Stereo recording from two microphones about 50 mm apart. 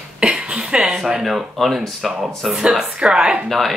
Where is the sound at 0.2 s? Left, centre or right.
Centre.